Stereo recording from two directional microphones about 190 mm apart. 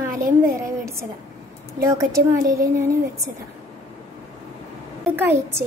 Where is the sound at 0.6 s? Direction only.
15° right (ahead or behind).